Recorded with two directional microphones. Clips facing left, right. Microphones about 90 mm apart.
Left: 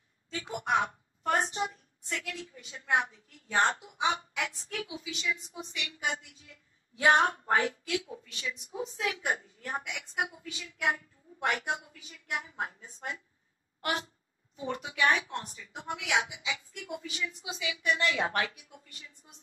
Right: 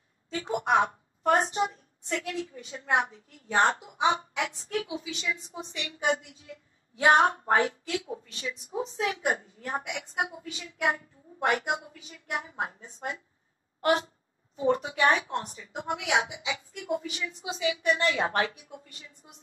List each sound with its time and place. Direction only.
0.3 s a woman's voice: 35° right (ahead or behind)
13.7 s a sound: 35° right (ahead or behind)
14.6 s speech: 35° right (ahead or behind)